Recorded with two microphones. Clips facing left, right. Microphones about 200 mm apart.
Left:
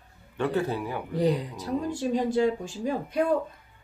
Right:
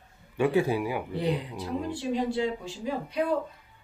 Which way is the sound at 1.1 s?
40° left (ahead or behind).